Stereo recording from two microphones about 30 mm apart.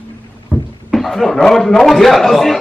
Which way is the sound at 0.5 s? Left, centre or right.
Left.